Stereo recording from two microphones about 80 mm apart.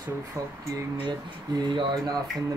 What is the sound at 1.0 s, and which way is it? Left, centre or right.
Speech, right.